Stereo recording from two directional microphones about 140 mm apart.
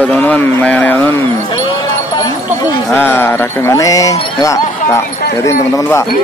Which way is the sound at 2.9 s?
15° left (ahead or behind).